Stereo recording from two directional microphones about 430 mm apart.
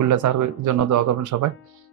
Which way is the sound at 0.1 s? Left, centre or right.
Right.